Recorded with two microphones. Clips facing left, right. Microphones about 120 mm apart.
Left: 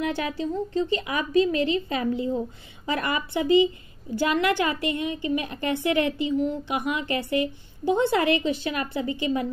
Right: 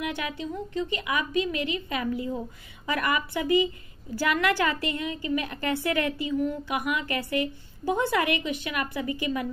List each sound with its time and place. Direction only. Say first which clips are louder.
0.0 s a woman's voice: left 5 dB; 35° left (ahead or behind)